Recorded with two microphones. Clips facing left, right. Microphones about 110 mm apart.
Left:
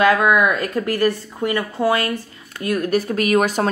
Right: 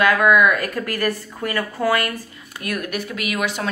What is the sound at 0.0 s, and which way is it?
A woman's voice, 25° left (ahead or behind).